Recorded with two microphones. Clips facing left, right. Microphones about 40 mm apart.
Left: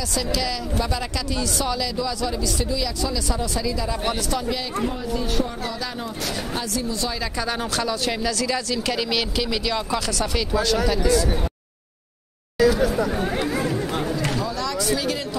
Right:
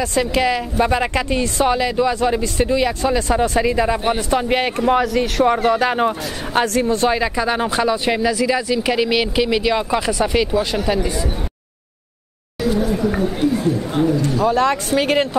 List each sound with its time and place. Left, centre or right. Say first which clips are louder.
0.0 s speech: right 8 dB; right
4.0 s speech: right 6 dB; right
4.4 s a man's voice: right 7 dB; right
4.8 s a man's voice: right 9 dB; right
7.3 s speech: right 7 dB; right
14.4 s speech: right 9 dB; right